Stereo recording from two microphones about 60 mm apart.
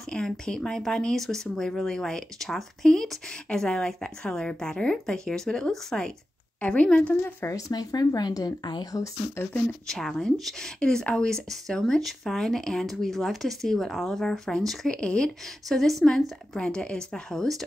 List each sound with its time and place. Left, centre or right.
0.1 s speech: centre
6.6 s a woman's voice: left
7.4 s speech: left
9.8 s speech: centre